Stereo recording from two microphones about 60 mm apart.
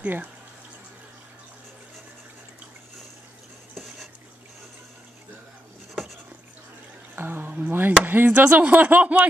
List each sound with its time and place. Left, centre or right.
0.0 s speech: right
7.2 s speech: right